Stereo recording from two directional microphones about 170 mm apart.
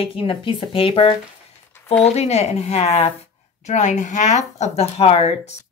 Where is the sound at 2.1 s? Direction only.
40° left (ahead or behind).